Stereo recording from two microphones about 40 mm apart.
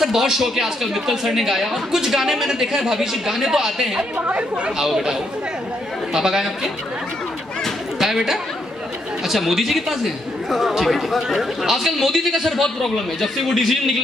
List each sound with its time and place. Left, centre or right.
0.0 s a man's voice: centre
6.1 s a man's voice: centre
8.0 s a man's voice: centre